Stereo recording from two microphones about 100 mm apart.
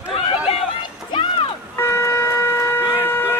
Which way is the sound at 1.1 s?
60° left (ahead or behind).